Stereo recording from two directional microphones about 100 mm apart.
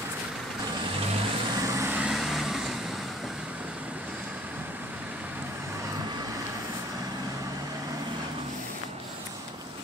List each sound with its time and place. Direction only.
1.6 s vehicle: 30° right (ahead or behind)
1.9 s vehicle: 10° right (ahead or behind)